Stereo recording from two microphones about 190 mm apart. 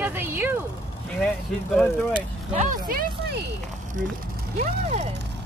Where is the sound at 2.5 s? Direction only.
40° right (ahead or behind).